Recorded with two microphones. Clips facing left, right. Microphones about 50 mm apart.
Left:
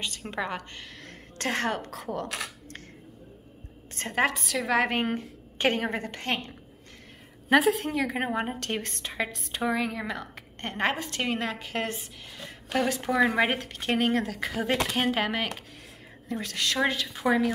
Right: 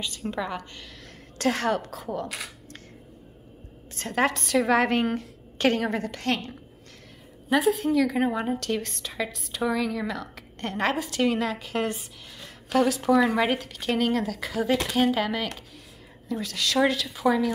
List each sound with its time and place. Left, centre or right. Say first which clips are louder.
0.3 s a woman's voice: right 1 dB; left
4.1 s a woman's voice: right 1 dB; centre
4.4 s a woman's voice: right 4 dB; centre
4.8 s a woman's voice: right 3 dB; centre
7.4 s a woman's voice: left 1 dB; left
7.9 s a woman's voice: right 5 dB; left
16.7 s a woman's voice: right 5 dB; centre